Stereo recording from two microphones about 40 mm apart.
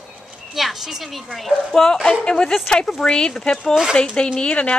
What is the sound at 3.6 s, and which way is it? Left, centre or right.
Speech, centre.